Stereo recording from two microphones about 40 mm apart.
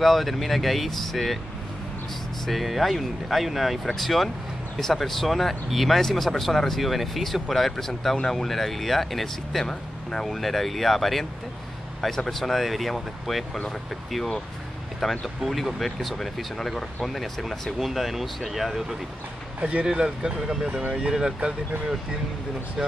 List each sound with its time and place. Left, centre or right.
0.0 s speech: centre
2.4 s speech: centre
12.3 s speech: centre
15.0 s speech: centre
19.6 s speech: right
19.9 s speech: centre